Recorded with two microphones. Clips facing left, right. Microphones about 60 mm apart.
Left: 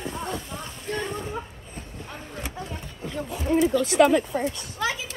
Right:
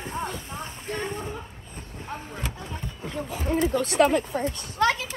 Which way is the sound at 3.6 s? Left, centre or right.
Right.